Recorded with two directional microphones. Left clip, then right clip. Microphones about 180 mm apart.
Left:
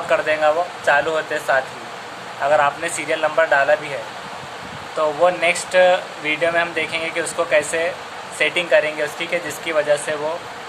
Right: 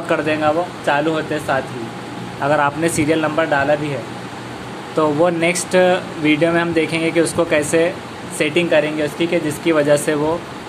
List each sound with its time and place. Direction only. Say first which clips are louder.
0.1 s speech: even; 10° right (ahead or behind)
2.4 s speech: right 1 dB; 20° right (ahead or behind)
3.3 s speech: left 5 dB; 10° right (ahead or behind)
5.2 s speech: even; 25° right (ahead or behind)
8.6 s speech: right 1 dB; 10° right (ahead or behind)
9.8 s speech: right 2 dB; 20° right (ahead or behind)